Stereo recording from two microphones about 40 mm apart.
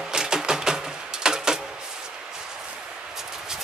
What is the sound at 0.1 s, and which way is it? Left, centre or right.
Music, centre.